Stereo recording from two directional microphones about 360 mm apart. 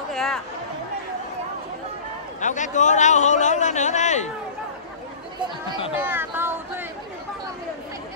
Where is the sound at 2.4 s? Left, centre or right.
Centre.